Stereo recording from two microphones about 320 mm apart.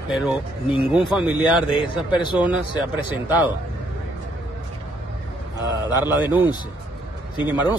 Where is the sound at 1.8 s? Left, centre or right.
Centre.